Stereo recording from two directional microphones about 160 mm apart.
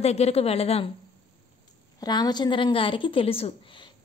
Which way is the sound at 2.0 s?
25° left (ahead or behind).